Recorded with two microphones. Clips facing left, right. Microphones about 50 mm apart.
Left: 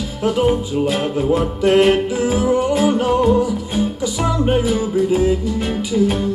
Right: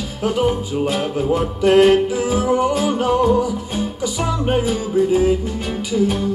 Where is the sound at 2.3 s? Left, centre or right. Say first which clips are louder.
Left 1 dB; right.